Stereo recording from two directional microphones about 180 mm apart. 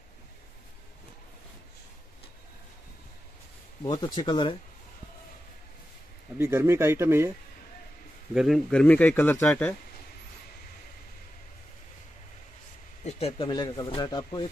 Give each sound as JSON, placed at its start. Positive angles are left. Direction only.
{"t": 3.8, "sound": "speech", "side_deg": 25}
{"t": 6.3, "sound": "speech", "side_deg": -10}
{"t": 8.4, "sound": "speech", "side_deg": 0}
{"t": 13.0, "sound": "speech", "side_deg": 30}